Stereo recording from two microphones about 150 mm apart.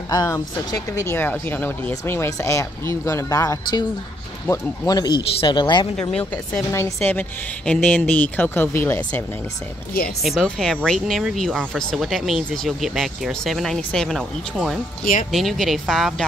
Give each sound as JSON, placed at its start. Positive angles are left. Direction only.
{"t": 0.1, "sound": "speech", "side_deg": 25}
{"t": 6.1, "sound": "speech", "side_deg": 5}
{"t": 10.0, "sound": "speech", "side_deg": 0}